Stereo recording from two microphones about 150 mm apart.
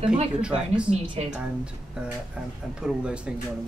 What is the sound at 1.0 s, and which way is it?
Speech, 35° right (ahead or behind).